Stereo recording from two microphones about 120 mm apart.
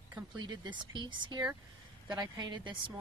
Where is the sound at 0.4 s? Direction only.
40° right (ahead or behind).